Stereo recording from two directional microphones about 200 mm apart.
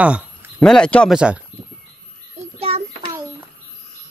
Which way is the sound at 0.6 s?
5° left (ahead or behind).